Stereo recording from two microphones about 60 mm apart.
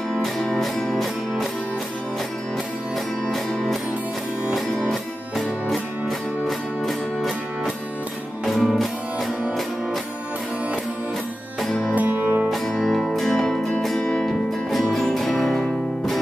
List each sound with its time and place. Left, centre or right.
0.1 s music: centre
5.7 s music: centre
8.5 s music: centre
11.9 s music: right
12.4 s music: centre